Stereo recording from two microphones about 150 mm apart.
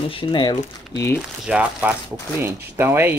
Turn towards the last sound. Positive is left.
turn(degrees=-15)  # may be behind; listen again after turning